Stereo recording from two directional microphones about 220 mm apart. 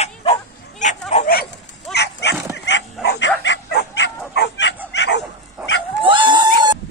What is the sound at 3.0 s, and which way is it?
Bow-wow, 50° left (ahead or behind).